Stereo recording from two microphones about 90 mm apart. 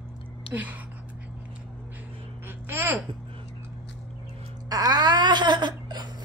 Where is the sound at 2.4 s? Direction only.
20° right (ahead or behind).